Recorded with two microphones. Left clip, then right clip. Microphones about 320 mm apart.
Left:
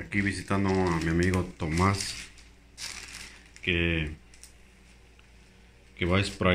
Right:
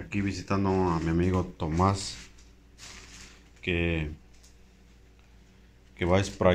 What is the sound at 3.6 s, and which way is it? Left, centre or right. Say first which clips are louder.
Speech: left 2 dB; centre.